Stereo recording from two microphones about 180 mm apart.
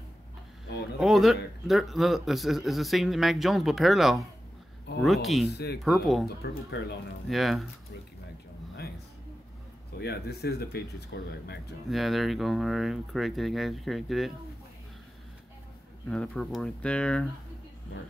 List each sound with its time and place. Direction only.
0.9 s a man's voice: centre (ahead or behind)
5.5 s speech: 65° left (ahead or behind)
5.8 s a man's voice: centre (ahead or behind)
6.2 s speech: 65° left (ahead or behind)
7.2 s a man's voice: centre (ahead or behind)
9.9 s speech: 65° left (ahead or behind)
11.9 s a man's voice: centre (ahead or behind)
16.1 s a man's voice: 5° left (ahead or behind)